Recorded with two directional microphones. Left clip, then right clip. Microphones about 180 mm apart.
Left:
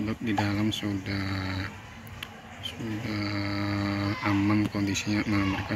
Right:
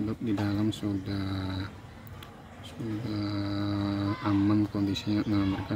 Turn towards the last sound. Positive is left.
turn(degrees=-20)  # may be behind; listen again after turning